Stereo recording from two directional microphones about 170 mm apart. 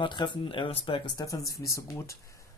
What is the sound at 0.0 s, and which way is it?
Speech, 30° left (ahead or behind).